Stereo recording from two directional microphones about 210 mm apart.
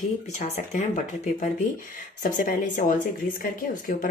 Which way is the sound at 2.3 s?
40° left (ahead or behind).